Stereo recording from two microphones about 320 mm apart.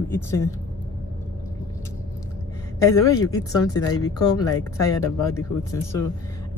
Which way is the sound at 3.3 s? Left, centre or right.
Left.